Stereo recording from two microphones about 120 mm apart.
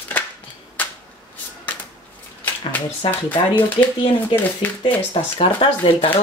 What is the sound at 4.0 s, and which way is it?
Speech, 45° left (ahead or behind).